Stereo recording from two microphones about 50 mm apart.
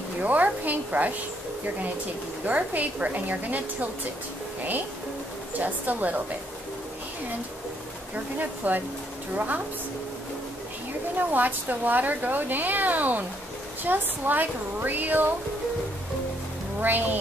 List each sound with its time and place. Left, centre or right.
0.2 s speech: right
2.4 s speech: right
5.5 s speech: right
8.4 s speech: right
11.1 s speech: right
16.8 s speech: right